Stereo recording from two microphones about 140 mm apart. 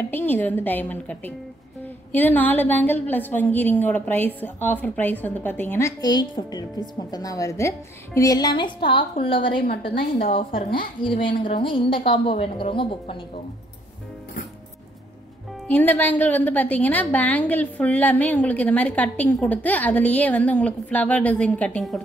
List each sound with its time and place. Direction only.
0.1 s a woman's voice: 15° left (ahead or behind); by 9.7 s 40° left (ahead or behind)
9.7 s a woman's voice: 90° left
11.0 s a woman's voice: 35° left (ahead or behind)
15.7 s a woman's voice: 15° left (ahead or behind)